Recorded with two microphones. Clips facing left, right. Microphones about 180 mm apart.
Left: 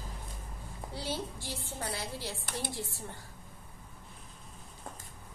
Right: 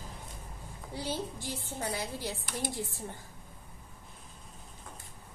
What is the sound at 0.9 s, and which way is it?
A woman's voice, 15° right (ahead or behind).